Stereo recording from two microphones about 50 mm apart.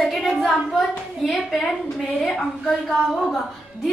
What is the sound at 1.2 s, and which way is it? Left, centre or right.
A woman's voice, centre.